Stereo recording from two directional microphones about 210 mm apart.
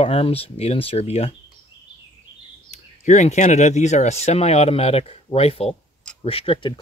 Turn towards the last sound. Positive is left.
turn(degrees=25)  # may be behind; listen again after turning